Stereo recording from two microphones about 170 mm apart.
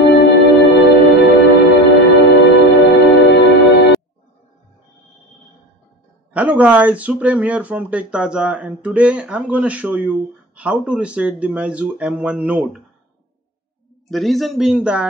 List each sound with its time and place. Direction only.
0.0 s music: 90° left
6.3 s speech: 10° right (ahead or behind)
14.1 s speech: centre (ahead or behind)